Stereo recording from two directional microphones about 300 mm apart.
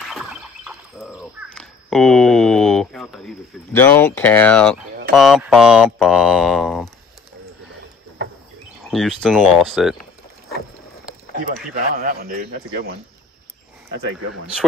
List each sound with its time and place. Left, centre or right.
0.1 s bird: centre
5.1 s speech: centre
8.8 s speech: centre
11.7 s a man's voice: right